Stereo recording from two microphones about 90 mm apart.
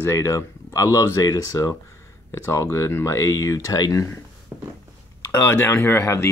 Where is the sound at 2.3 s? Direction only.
30° left (ahead or behind).